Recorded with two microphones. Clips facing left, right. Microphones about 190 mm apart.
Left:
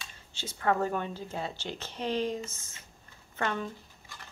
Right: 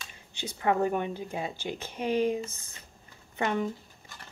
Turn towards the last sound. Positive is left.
turn(degrees=-15)  # may be behind; listen again after turning